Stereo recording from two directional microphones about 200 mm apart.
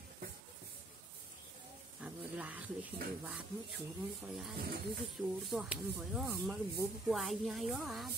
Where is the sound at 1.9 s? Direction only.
5° right (ahead or behind).